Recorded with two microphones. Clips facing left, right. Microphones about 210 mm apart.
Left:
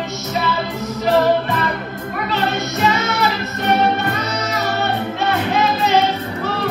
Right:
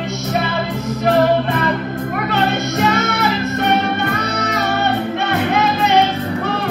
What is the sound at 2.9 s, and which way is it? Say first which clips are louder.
Music: right 2 dB; 55° right (ahead or behind).